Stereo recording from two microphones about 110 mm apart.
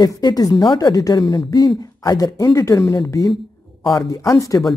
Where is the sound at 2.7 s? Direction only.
45° left (ahead or behind).